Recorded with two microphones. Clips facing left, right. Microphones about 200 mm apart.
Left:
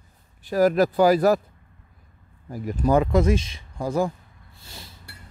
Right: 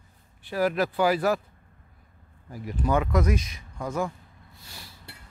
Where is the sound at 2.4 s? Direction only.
45° left (ahead or behind).